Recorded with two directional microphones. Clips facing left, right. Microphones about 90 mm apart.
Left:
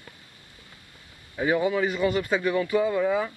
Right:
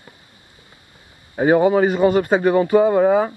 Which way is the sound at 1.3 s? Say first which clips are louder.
Right 9 dB; 50° right (ahead or behind).